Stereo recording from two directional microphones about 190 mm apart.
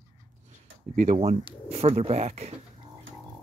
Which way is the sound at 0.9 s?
35° right (ahead or behind).